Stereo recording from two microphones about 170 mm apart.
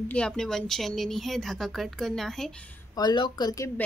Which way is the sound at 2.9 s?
25° left (ahead or behind).